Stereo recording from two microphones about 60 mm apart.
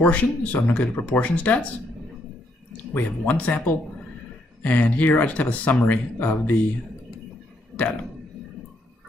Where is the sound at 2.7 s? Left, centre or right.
Left.